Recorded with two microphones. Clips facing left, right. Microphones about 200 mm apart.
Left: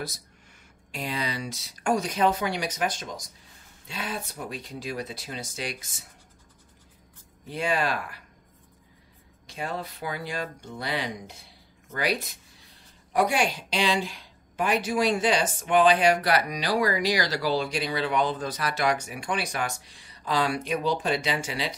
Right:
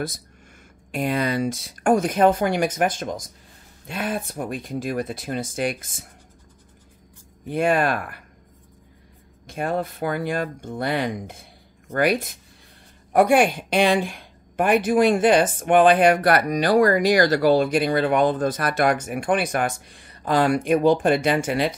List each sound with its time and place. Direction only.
0.9 s a woman's voice: 55° right (ahead or behind)
7.4 s a woman's voice: 55° right (ahead or behind)
9.5 s a woman's voice: 50° right (ahead or behind)